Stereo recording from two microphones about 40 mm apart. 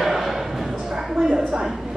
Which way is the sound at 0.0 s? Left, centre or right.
Centre.